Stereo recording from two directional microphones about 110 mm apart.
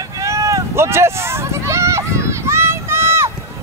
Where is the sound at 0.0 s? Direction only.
30° right (ahead or behind).